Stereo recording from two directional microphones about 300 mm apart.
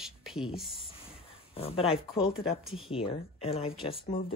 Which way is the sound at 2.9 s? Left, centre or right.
Centre.